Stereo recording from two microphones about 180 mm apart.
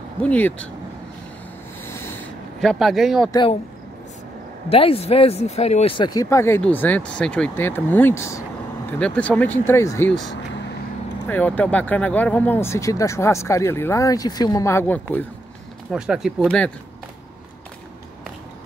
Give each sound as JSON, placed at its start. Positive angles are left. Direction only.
{"t": 0.2, "sound": "speech", "side_deg": 10}
{"t": 2.6, "sound": "speech", "side_deg": 0}
{"t": 3.3, "sound": "speech", "side_deg": 25}
{"t": 4.6, "sound": "speech", "side_deg": 30}
{"t": 11.2, "sound": "speech", "side_deg": 10}
{"t": 15.9, "sound": "speech", "side_deg": -5}